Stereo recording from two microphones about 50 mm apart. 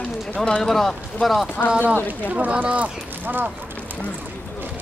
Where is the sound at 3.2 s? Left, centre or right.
Right.